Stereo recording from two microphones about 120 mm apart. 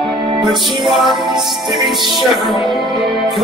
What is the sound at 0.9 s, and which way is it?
Music, centre (ahead or behind).